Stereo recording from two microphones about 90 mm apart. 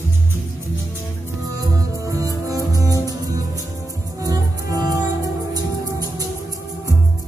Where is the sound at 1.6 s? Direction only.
40° right (ahead or behind).